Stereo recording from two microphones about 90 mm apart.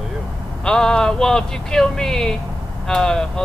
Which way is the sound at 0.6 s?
10° left (ahead or behind).